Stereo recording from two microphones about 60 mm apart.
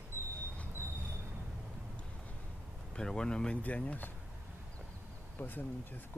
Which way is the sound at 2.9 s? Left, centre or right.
Centre.